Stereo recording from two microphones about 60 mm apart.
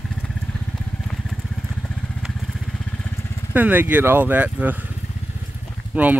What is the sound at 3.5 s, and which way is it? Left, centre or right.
Speech, right.